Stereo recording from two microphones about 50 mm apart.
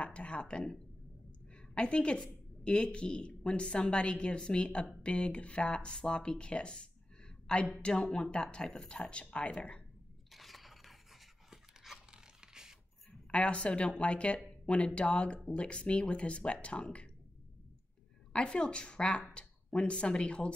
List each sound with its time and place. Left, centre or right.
0.0 s speech: left
1.8 s a woman's voice: centre
7.9 s a woman's voice: centre
10.3 s a sound: centre
13.3 s a woman's voice: left
18.3 s a woman's voice: centre